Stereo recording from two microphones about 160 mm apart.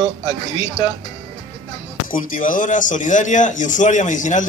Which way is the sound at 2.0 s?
60° left (ahead or behind).